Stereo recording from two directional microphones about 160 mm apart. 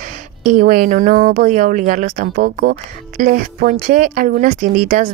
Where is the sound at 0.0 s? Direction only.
55° right (ahead or behind).